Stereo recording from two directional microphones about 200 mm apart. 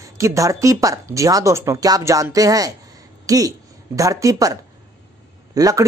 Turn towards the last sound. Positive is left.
turn(degrees=-15)  # may be behind; listen again after turning